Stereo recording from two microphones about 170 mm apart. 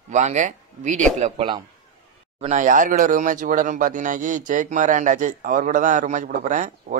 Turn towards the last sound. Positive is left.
turn(degrees=-50)  # may be behind; listen again after turning